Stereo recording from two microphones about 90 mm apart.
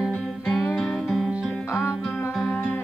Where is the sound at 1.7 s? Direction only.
30° left (ahead or behind).